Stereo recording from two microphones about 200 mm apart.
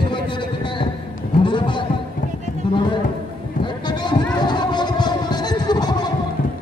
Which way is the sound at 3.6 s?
20° left (ahead or behind).